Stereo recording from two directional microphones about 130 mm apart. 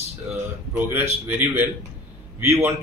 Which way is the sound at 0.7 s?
15° right (ahead or behind).